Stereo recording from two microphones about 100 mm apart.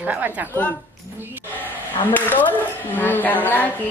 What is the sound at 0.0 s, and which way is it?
Speech, 15° right (ahead or behind).